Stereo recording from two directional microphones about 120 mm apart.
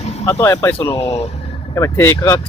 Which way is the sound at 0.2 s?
25° left (ahead or behind).